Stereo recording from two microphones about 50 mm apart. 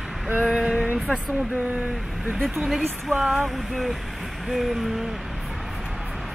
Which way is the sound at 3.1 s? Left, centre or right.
Centre.